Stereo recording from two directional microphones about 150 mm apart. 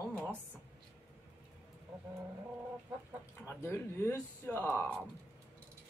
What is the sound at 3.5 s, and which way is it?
Speech, 15° left (ahead or behind).